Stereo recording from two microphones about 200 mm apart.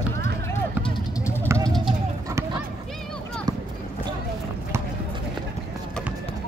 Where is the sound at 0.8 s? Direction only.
15° left (ahead or behind).